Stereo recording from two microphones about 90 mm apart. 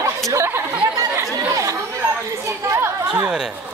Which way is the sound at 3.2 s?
5° right (ahead or behind).